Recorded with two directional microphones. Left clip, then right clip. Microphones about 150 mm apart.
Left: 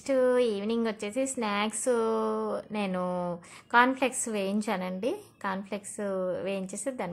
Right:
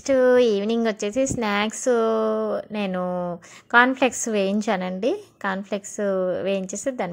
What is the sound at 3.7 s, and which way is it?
A woman's voice, 30° right (ahead or behind).